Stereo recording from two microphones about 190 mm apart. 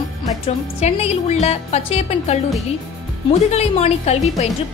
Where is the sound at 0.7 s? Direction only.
35° left (ahead or behind).